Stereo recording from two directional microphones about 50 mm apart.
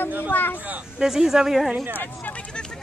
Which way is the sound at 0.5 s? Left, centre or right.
Right.